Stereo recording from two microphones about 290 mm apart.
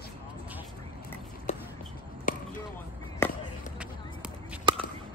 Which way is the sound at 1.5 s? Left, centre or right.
Left.